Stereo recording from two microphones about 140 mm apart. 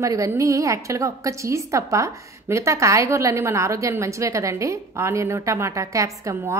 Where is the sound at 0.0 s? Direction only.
25° right (ahead or behind).